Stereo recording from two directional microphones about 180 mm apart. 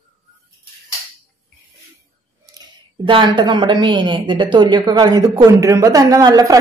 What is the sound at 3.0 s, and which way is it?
A woman's voice, 30° right (ahead or behind).